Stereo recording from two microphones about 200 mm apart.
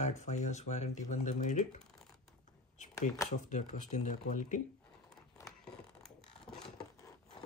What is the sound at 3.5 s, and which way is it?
Speech, 35° left (ahead or behind).